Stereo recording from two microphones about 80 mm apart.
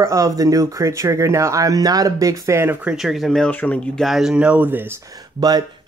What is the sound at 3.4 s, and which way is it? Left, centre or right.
Speech, centre.